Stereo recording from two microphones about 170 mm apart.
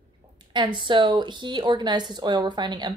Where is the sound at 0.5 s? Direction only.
30° right (ahead or behind).